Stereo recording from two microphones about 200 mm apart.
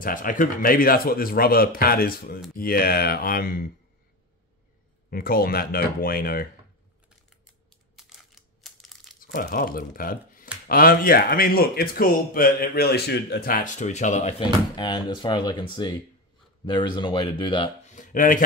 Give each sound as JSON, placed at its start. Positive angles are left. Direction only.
{"t": 0.0, "sound": "a man's voice", "side_deg": 45}
{"t": 5.1, "sound": "a man's voice", "side_deg": 45}
{"t": 8.0, "sound": "crumpling", "side_deg": 0}
{"t": 9.2, "sound": "a man's voice", "side_deg": 45}
{"t": 14.4, "sound": "speech", "side_deg": 20}
{"t": 17.8, "sound": "a sound", "side_deg": 40}